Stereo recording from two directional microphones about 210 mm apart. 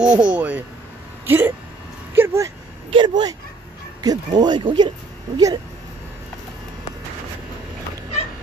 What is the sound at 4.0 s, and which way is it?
Speech, 20° right (ahead or behind).